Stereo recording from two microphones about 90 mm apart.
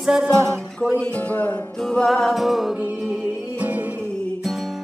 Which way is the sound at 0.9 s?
15° left (ahead or behind).